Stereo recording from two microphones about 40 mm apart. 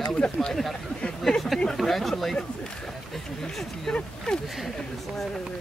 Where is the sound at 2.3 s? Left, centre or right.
Centre.